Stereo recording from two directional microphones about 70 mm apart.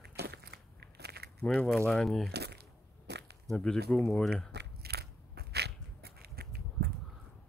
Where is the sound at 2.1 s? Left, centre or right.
Centre.